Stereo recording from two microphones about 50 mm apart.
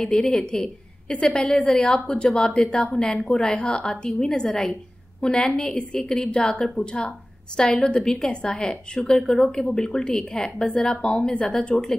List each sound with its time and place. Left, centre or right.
0.0 s a woman's voice: left